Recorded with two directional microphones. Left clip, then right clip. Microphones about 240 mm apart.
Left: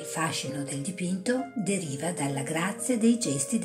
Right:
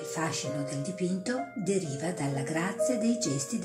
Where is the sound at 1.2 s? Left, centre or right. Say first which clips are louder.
Left 4 dB; centre.